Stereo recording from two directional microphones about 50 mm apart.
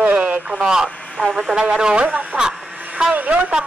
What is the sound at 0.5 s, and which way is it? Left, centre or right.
A woman's voice, centre.